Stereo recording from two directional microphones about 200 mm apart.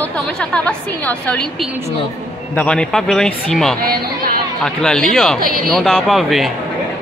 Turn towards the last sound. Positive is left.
turn(degrees=0)  # may be behind; listen again after turning